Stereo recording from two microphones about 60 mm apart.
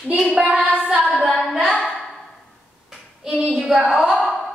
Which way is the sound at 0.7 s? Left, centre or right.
Centre.